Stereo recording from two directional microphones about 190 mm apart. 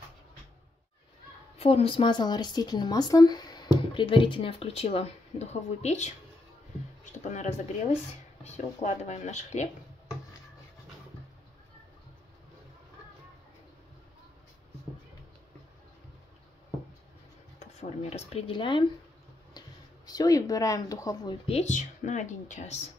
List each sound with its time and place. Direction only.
1.6 s speech: 30° left (ahead or behind)
17.6 s speech: 35° left (ahead or behind)
20.1 s speech: 20° left (ahead or behind); by 22.8 s 40° left (ahead or behind)